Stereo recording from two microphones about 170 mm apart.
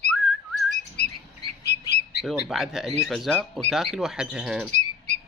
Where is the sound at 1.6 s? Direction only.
70° left (ahead or behind).